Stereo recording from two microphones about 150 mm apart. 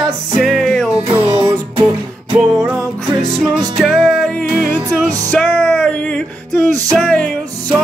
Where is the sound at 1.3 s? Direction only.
45° right (ahead or behind).